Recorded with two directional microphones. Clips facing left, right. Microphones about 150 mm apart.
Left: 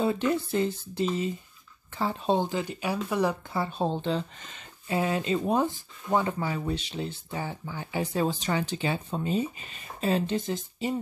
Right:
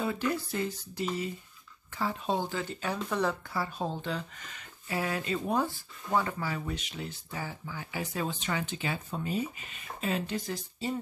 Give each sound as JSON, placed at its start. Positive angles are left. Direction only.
{"t": 0.0, "sound": "speech", "side_deg": 25}
{"t": 3.5, "sound": "speech", "side_deg": 25}